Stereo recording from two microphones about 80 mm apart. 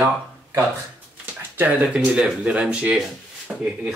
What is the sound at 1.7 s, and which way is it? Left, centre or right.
Speech, centre.